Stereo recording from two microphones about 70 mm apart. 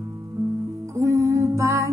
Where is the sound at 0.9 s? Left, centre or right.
Right.